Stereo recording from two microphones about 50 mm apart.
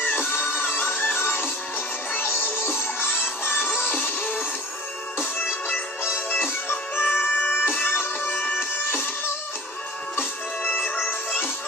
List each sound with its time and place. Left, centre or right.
0.0 s music: left
6.3 s music: left
11.1 s music: left